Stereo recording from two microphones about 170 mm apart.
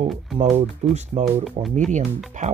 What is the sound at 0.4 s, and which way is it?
Speech, 35° right (ahead or behind).